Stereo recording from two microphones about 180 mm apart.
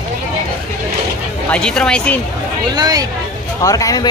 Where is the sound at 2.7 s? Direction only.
20° right (ahead or behind).